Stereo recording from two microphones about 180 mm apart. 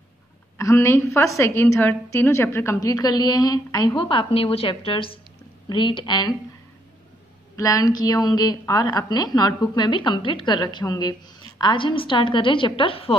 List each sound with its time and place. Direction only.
0.6 s a woman's voice: 15° left (ahead or behind)
7.5 s a woman's voice: 20° left (ahead or behind)